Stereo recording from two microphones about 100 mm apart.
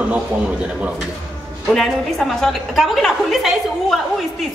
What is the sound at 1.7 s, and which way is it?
A woman's voice, 5° left (ahead or behind).